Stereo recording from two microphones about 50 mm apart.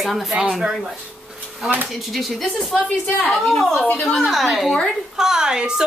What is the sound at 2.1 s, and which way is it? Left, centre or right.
A woman's voice, centre.